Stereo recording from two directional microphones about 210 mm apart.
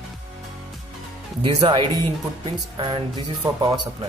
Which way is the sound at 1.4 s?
20° right (ahead or behind).